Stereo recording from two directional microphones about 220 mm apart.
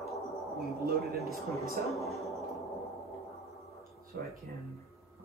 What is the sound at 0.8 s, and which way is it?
Speech, 45° right (ahead or behind).